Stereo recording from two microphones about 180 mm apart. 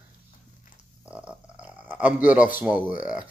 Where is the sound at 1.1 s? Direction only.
5° right (ahead or behind).